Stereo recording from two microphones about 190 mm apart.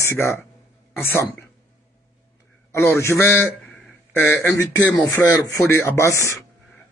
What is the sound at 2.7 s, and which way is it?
Speech, 15° left (ahead or behind).